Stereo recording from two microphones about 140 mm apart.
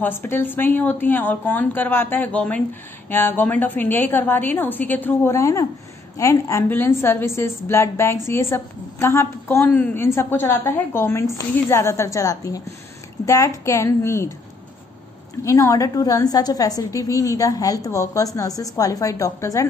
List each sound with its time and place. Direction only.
0.0 s a woman's voice: 15° left (ahead or behind)
15.4 s a woman's voice: 25° left (ahead or behind)